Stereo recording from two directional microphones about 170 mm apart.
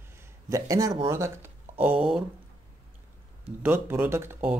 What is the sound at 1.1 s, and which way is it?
Speech, 15° right (ahead or behind).